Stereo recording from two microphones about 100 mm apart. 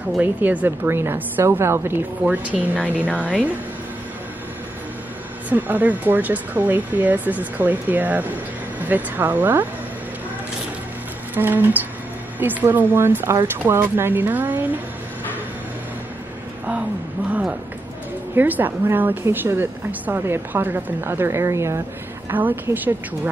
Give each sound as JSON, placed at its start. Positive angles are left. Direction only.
{"t": 0.2, "sound": "speech", "side_deg": -15}
{"t": 5.5, "sound": "speech", "side_deg": -15}
{"t": 11.3, "sound": "speech", "side_deg": -20}
{"t": 18.3, "sound": "speech", "side_deg": -20}